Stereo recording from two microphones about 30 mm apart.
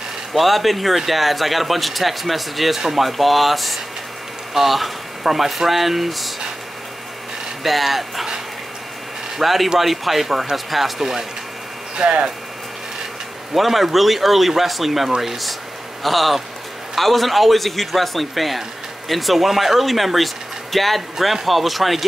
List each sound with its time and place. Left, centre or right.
0.3 s speech: centre
7.6 s speech: centre
9.4 s speech: centre
12.0 s speech: right
13.6 s speech: centre